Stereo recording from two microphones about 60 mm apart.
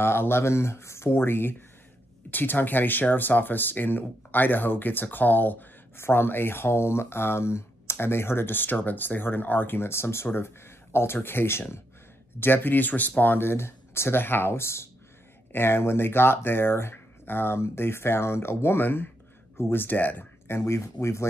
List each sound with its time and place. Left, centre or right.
0.0 s speech: left
5.9 s speech: left
19.5 s speech: left
19.8 s speech: left
20.4 s speech: left